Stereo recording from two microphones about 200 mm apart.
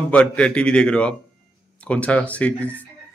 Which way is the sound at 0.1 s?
5° left (ahead or behind).